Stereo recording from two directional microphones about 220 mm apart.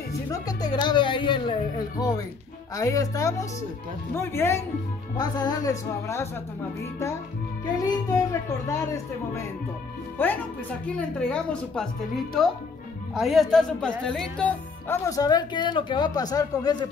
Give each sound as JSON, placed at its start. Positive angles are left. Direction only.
{"t": 0.3, "sound": "speech", "side_deg": 15}
{"t": 7.6, "sound": "speech", "side_deg": 15}
{"t": 10.1, "sound": "a woman's voice", "side_deg": 10}
{"t": 13.1, "sound": "speech", "side_deg": 0}